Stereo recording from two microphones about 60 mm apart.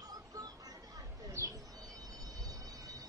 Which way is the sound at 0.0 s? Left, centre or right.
Right.